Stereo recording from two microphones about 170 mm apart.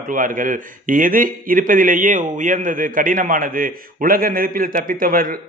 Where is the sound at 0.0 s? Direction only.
55° right (ahead or behind).